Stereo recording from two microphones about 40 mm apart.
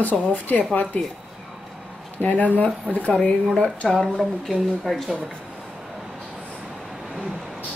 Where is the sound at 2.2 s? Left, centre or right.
Left.